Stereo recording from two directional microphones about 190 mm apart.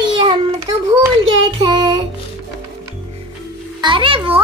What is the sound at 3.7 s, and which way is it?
Speech, 25° right (ahead or behind).